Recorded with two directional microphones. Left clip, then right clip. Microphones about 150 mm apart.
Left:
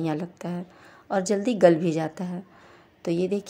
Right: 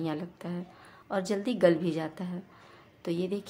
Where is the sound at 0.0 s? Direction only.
35° left (ahead or behind).